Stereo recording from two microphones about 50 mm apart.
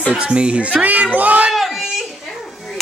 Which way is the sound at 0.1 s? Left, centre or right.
Centre.